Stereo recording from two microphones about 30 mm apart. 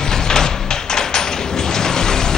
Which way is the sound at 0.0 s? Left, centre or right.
Left.